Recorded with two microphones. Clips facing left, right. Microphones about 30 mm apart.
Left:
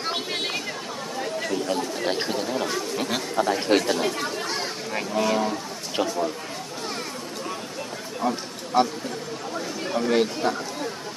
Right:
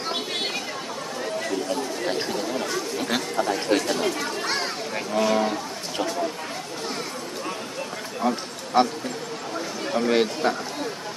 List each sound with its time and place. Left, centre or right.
1.7 s chatter: centre
3.3 s speech: centre
8.2 s speech: centre
9.9 s speech: centre